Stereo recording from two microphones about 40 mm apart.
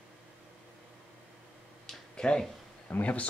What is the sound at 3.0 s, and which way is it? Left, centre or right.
Speech, left.